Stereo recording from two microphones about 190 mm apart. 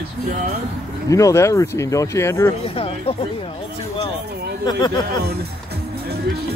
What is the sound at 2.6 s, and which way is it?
Speech, 30° left (ahead or behind).